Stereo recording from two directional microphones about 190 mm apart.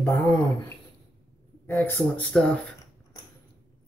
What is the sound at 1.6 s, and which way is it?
Speech, 10° left (ahead or behind).